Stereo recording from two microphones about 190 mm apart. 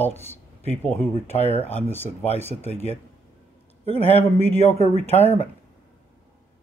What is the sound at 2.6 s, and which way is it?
Speech, 35° right (ahead or behind).